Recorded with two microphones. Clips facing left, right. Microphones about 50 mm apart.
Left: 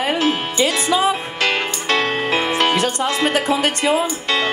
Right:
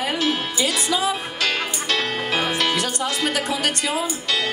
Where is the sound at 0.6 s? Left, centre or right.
Left.